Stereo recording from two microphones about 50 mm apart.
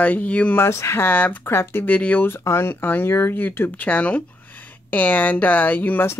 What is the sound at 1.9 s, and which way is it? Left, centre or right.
Speech, left.